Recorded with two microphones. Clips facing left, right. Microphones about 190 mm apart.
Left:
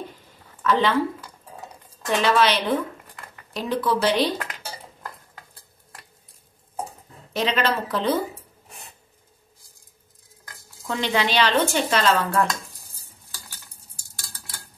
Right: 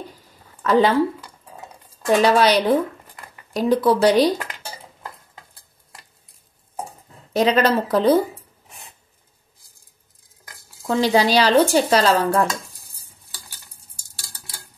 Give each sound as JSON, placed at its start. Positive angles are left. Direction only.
{"t": 0.6, "sound": "speech", "side_deg": -40}
{"t": 2.0, "sound": "speech", "side_deg": -40}
{"t": 7.3, "sound": "speech", "side_deg": -40}
{"t": 10.9, "sound": "speech", "side_deg": -35}